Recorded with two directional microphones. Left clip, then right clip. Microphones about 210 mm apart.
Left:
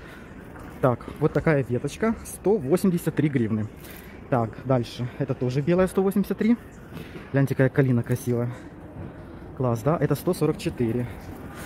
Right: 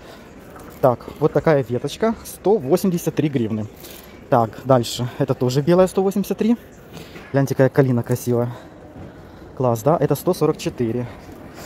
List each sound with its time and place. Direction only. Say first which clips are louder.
0.7 s speech: right 6 dB; 5° right (ahead or behind); by 5.8 s 25° right (ahead or behind)
5.8 s speech: right 4 dB; 5° right (ahead or behind)
9.6 s speech: right 7 dB; 10° right (ahead or behind)